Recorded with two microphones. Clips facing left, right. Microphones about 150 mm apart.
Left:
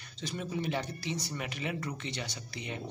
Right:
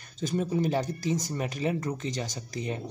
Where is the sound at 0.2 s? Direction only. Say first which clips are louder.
Right 8 dB; 40° right (ahead or behind).